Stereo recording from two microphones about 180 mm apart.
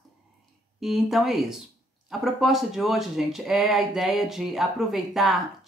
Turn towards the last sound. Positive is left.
turn(degrees=0)  # may be behind; listen again after turning